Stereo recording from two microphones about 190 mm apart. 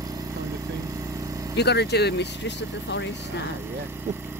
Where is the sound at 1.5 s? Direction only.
60° left (ahead or behind).